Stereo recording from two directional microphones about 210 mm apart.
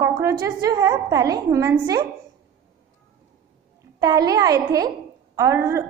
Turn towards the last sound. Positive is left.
turn(degrees=-15)  # may be behind; listen again after turning